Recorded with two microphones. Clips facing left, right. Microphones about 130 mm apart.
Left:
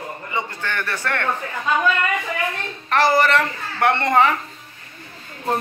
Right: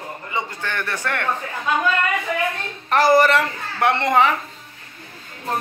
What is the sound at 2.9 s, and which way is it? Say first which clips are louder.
A man's voice: right 2 dB; 15° right (ahead or behind).